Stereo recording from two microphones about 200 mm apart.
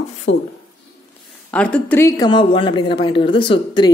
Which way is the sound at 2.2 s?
25° left (ahead or behind).